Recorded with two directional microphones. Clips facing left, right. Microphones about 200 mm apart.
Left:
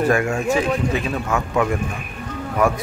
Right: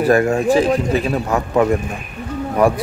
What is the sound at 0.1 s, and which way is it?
Speech, 35° right (ahead or behind).